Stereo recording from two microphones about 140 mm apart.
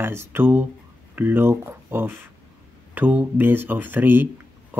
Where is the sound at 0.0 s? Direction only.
15° right (ahead or behind).